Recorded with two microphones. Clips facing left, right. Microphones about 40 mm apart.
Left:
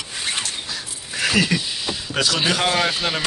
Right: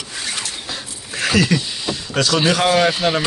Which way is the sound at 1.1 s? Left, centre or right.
Centre.